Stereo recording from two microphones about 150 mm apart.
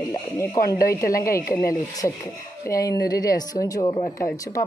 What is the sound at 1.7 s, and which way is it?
Speech, 25° left (ahead or behind).